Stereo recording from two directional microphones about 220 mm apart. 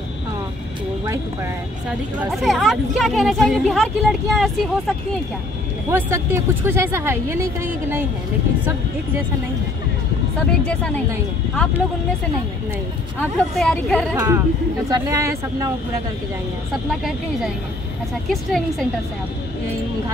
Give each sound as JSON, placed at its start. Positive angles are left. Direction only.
{"t": 2.3, "sound": "speech", "side_deg": 0}
{"t": 5.9, "sound": "speech", "side_deg": -10}
{"t": 10.6, "sound": "speech", "side_deg": 5}
{"t": 13.2, "sound": "speech", "side_deg": 0}
{"t": 14.1, "sound": "speech", "side_deg": -15}
{"t": 18.3, "sound": "speech", "side_deg": 0}